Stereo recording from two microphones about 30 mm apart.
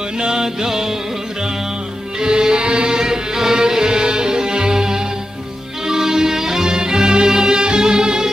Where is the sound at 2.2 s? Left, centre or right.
Right.